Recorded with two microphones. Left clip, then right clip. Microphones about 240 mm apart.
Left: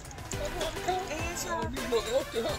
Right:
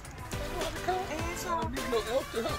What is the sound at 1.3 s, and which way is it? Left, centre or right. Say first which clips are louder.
Speech: right 1 dB; centre.